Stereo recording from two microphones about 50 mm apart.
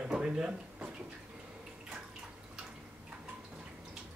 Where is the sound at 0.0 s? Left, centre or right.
Centre.